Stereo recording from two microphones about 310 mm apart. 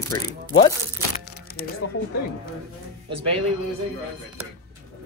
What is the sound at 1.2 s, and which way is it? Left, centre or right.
Crumpling, left.